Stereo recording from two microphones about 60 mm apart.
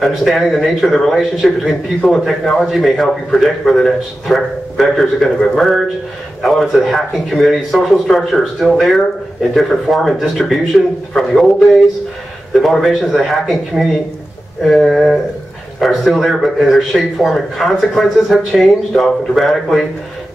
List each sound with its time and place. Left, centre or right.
0.0 s a man's voice: centre